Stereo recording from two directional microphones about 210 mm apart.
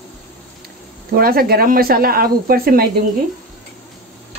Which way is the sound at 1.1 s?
45° right (ahead or behind).